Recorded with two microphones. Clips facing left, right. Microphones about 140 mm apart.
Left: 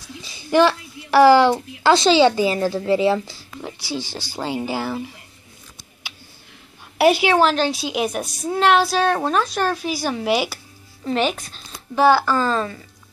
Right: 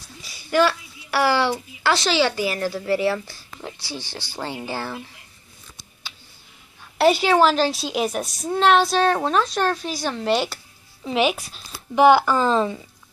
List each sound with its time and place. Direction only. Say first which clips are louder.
0.2 s a sound: left 3 dB; 20° left (ahead or behind)
1.9 s a woman's voice: left 6 dB; 25° left (ahead or behind)
7.0 s a woman's voice: left 1 dB; 5° left (ahead or behind)
11.1 s speech: even; 5° right (ahead or behind)
12.0 s a woman's voice: right 1 dB; 15° right (ahead or behind)